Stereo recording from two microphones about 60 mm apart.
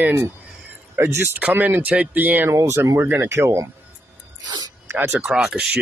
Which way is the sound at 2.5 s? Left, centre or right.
Right.